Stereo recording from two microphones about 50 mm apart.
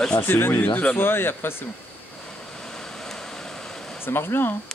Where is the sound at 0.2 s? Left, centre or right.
Left.